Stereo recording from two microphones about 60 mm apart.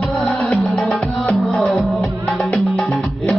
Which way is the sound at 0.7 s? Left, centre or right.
Left.